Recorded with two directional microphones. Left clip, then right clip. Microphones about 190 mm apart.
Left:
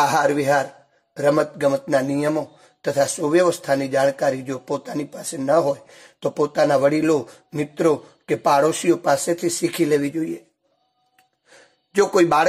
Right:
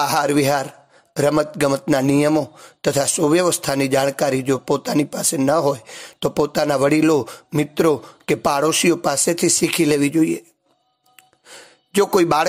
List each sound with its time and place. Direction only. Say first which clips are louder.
0.0 s speech: even; 30° right (ahead or behind)
11.9 s speech: even; 30° right (ahead or behind)